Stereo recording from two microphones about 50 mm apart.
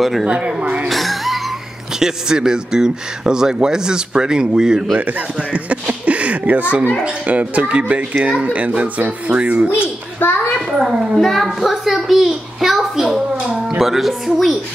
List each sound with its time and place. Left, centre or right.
0.2 s speech: right
0.8 s music: centre
2.0 s speech: centre
4.9 s speech: right
10.2 s a child's voice: left
10.8 s a woman's voice: centre